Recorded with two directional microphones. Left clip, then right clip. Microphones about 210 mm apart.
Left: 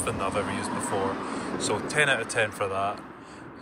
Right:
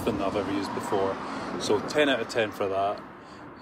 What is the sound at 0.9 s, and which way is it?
Speech, 50° right (ahead or behind).